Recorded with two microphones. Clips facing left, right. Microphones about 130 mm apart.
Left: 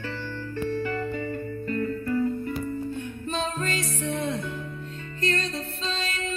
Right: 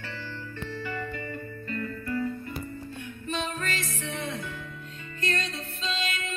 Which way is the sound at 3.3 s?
35° left (ahead or behind).